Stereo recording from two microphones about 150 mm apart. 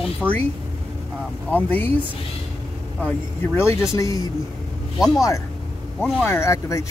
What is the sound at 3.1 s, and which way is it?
Speech, 15° left (ahead or behind).